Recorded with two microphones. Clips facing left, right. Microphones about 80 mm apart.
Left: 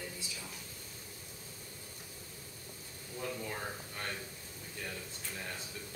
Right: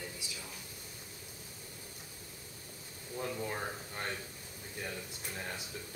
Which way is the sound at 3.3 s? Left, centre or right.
Centre.